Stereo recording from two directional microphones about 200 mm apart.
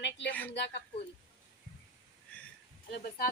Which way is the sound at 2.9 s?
45° left (ahead or behind).